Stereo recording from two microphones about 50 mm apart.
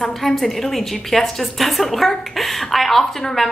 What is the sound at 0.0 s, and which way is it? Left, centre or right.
A woman's voice, centre.